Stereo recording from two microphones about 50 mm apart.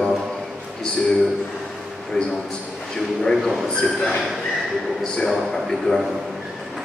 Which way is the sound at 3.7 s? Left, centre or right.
Centre.